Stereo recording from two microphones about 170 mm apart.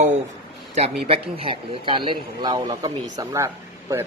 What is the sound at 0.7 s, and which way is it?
Speech, 35° right (ahead or behind).